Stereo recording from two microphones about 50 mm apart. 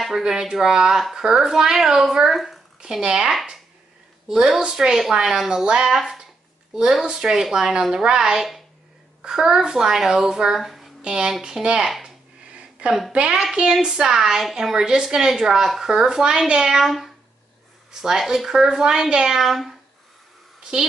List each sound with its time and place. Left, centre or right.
0.2 s a woman's voice: centre
3.0 s a woman's voice: centre
11.0 s a woman's voice: centre
11.8 s a woman's voice: centre
12.4 s a sound: right
13.1 s a woman's voice: right; by 19.8 s centre